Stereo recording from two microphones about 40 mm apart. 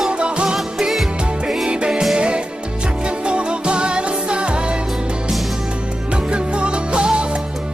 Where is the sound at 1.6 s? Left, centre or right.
Right.